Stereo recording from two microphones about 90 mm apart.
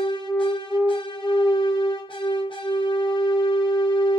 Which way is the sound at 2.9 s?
60° left (ahead or behind).